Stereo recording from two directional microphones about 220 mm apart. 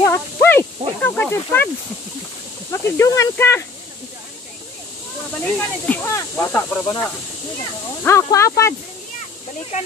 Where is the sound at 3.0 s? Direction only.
10° left (ahead or behind).